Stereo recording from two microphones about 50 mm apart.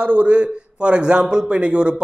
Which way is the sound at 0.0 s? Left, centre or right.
Right.